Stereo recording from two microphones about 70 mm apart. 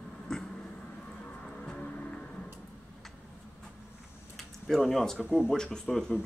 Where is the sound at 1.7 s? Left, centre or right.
Centre.